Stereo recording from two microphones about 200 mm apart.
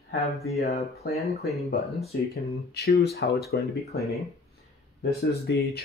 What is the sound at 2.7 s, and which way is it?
Speech, 55° left (ahead or behind).